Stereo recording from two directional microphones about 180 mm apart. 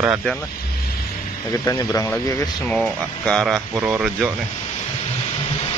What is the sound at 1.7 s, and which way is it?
Speech, 15° left (ahead or behind).